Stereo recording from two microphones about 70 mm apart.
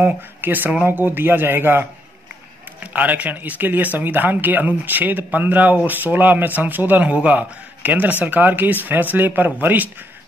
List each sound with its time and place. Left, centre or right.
0.0 s a man's voice: right
2.8 s a man's voice: right